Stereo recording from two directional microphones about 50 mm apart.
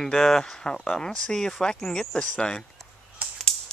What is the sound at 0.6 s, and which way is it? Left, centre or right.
Speech, centre.